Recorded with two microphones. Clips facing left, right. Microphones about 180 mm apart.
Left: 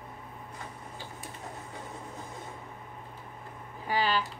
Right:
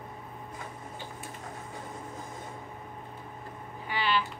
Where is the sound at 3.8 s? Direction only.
40° left (ahead or behind).